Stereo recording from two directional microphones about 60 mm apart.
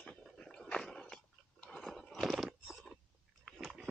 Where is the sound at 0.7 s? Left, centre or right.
Centre.